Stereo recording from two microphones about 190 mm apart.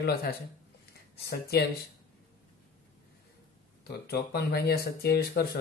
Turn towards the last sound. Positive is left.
turn(degrees=55)  # may be behind; listen again after turning